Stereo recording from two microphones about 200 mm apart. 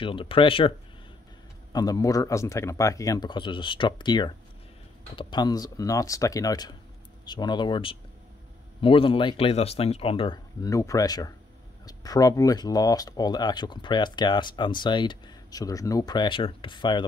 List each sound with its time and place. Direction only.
0.0 s speech: 25° left (ahead or behind)